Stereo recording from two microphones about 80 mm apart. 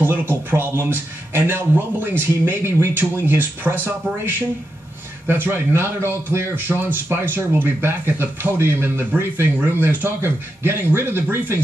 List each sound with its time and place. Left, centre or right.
0.0 s speech: right